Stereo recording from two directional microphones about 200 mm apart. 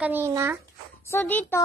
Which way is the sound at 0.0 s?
10° right (ahead or behind).